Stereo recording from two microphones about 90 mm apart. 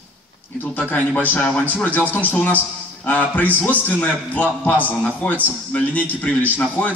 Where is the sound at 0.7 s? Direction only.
20° left (ahead or behind).